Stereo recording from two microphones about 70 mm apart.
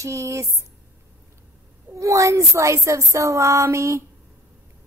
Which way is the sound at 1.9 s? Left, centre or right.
Right.